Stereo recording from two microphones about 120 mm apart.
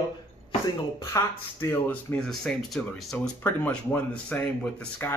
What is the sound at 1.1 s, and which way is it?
Speech, 20° left (ahead or behind).